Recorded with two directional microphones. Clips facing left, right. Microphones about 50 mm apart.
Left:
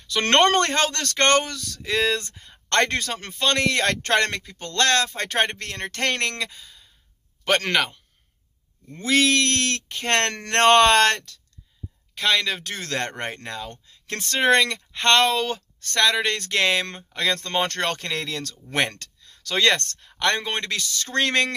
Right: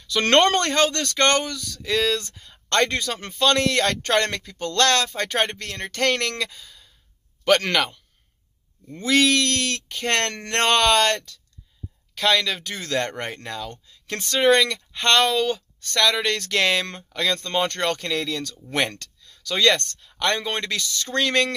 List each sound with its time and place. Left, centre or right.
0.0 s speech: left
1.8 s speech: left
2.7 s speech: left
3.3 s speech: left
4.5 s speech: left
7.4 s speech: left
9.0 s speech: left
10.3 s speech: left
10.6 s speech: left
12.2 s speech: left
12.7 s speech: left
13.2 s speech: left
17.4 s speech: left